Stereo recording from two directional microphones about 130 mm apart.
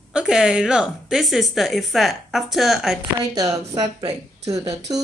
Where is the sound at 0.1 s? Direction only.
5° right (ahead or behind).